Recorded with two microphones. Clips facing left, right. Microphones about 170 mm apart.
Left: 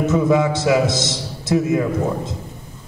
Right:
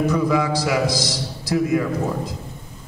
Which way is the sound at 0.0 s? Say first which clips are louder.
Left 3 dB; 25° left (ahead or behind).